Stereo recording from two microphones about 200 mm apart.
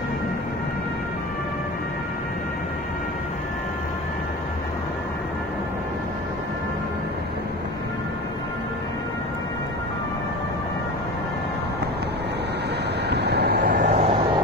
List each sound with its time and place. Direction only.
13.1 s vehicle: 55° right (ahead or behind)
13.8 s vehicle: 30° right (ahead or behind)